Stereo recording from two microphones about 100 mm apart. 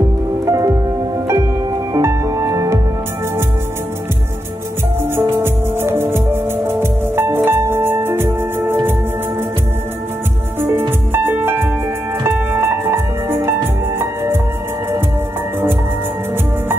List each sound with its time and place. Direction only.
0.5 s music: 30° right (ahead or behind)
5.4 s music: 25° right (ahead or behind)
10.6 s music: 20° right (ahead or behind)